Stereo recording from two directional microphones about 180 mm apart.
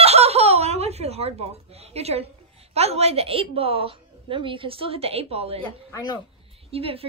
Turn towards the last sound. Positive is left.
turn(degrees=-30)  # may be behind; listen again after turning